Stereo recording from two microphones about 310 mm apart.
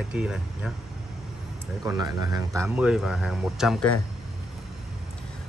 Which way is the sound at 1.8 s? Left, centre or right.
Centre.